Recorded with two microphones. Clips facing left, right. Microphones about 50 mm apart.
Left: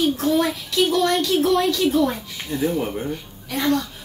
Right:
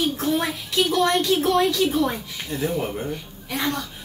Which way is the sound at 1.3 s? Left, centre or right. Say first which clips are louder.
Left 1 dB; right.